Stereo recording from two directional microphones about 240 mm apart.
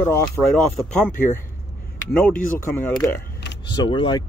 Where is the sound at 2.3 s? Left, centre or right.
Centre.